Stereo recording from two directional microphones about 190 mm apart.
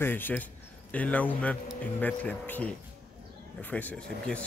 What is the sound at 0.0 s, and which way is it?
Speech, 10° left (ahead or behind).